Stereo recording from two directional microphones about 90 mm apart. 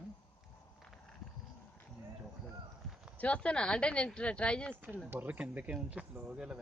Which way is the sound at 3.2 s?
15° left (ahead or behind).